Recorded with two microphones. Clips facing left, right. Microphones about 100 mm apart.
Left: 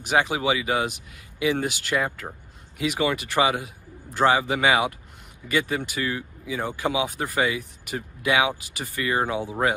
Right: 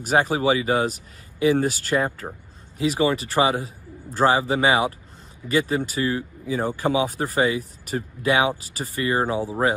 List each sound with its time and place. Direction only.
0.0 s speech: 40° right (ahead or behind)